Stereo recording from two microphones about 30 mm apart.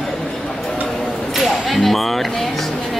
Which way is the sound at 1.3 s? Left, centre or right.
Centre.